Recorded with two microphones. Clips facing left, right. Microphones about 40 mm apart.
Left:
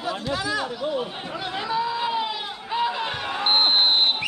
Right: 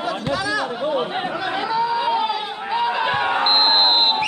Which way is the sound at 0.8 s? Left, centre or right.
Right.